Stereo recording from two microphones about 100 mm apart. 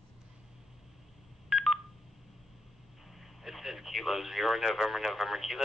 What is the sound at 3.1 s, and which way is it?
Radio, centre (ahead or behind).